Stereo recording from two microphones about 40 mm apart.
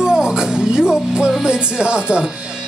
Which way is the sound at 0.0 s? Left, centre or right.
Centre.